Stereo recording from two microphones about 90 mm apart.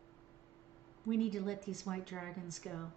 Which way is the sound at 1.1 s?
5° left (ahead or behind).